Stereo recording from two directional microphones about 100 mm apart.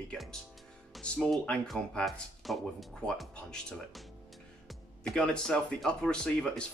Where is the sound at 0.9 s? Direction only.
10° left (ahead or behind).